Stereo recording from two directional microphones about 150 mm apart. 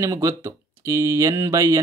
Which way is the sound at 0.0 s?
20° right (ahead or behind).